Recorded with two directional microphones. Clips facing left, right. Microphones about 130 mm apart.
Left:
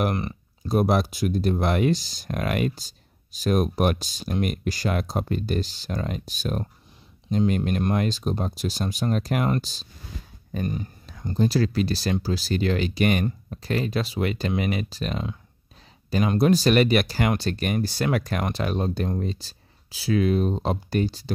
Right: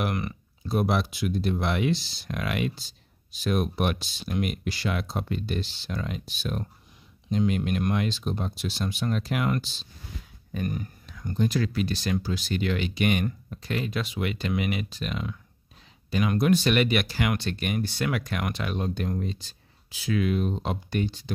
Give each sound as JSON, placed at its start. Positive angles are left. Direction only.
{"t": 0.0, "sound": "speech", "side_deg": 35}
{"t": 10.5, "sound": "speech", "side_deg": 30}